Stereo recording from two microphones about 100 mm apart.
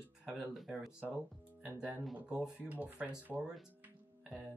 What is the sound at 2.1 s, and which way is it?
Speech, 10° right (ahead or behind).